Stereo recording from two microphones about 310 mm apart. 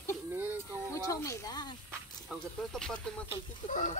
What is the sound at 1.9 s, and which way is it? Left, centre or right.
Speech, centre.